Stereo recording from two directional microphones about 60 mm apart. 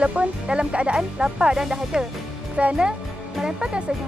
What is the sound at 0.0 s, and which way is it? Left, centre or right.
Speech, right.